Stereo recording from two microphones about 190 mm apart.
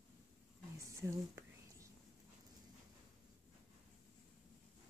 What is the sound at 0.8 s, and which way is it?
Whispering, 15° right (ahead or behind).